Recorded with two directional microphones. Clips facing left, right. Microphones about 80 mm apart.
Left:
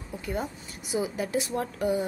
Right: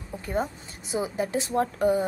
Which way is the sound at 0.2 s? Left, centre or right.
Right.